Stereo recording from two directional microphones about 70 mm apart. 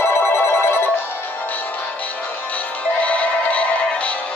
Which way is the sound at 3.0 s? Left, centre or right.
Left.